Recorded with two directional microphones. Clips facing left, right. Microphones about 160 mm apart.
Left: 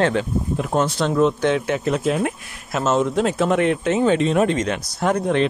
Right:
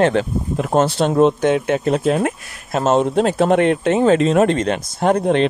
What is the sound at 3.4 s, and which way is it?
Speech, 60° right (ahead or behind).